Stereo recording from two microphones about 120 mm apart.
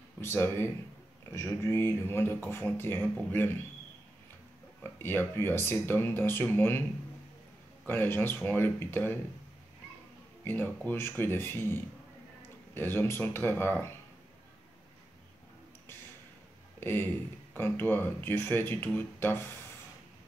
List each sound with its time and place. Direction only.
0.2 s speech: 20° left (ahead or behind)
4.9 s speech: 20° left (ahead or behind)
7.8 s speech: 20° left (ahead or behind)
10.4 s speech: 15° left (ahead or behind)
16.8 s speech: 20° left (ahead or behind)